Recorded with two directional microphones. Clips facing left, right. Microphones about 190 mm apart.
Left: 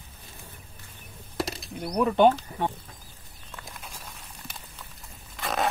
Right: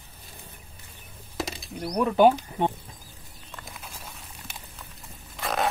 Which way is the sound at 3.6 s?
Centre (ahead or behind).